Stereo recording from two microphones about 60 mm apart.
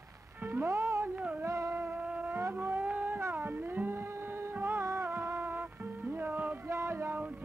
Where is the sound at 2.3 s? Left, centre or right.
Right.